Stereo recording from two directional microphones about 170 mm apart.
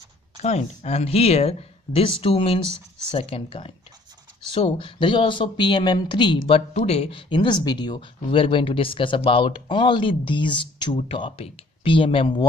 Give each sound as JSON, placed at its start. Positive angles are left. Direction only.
{"t": 0.4, "sound": "speech", "side_deg": 40}